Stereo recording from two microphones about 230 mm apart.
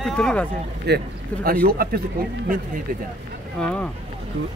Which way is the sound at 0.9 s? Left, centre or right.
Right.